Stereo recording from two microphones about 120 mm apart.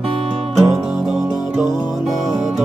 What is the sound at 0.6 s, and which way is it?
Music, 5° right (ahead or behind).